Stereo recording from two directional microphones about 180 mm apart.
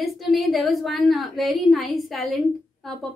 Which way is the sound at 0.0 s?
Centre (ahead or behind).